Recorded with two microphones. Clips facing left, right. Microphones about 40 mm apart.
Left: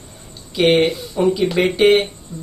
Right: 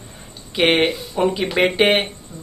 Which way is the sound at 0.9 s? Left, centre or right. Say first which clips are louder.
Left 2 dB; centre.